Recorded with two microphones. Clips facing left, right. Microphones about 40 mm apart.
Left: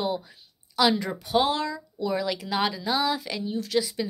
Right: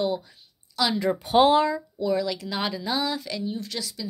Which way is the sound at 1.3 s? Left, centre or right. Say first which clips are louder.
Right 6 dB; right.